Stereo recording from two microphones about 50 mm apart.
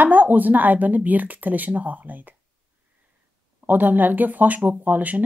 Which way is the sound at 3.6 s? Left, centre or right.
Right.